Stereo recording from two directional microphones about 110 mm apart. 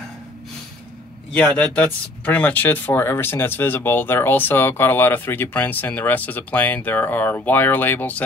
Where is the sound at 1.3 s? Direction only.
10° left (ahead or behind).